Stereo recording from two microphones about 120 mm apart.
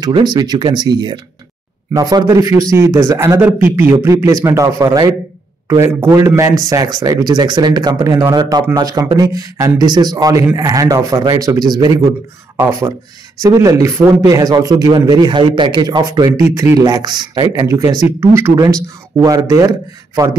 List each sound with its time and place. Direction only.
0.0 s a man's voice: 35° right (ahead or behind)
12.5 s a man's voice: 20° right (ahead or behind)